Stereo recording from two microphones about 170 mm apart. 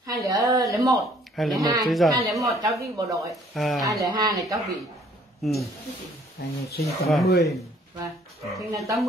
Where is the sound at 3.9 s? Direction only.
20° right (ahead or behind).